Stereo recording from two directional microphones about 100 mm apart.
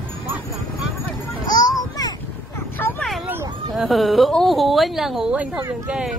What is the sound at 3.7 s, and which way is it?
Speech, centre (ahead or behind).